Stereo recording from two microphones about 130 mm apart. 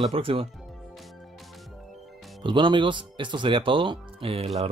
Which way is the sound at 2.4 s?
40° right (ahead or behind).